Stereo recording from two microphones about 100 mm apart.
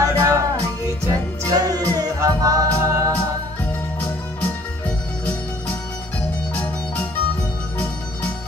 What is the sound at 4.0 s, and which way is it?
Music, 10° left (ahead or behind).